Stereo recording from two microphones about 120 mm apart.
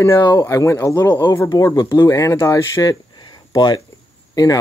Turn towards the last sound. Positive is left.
turn(degrees=30)  # may be behind; listen again after turning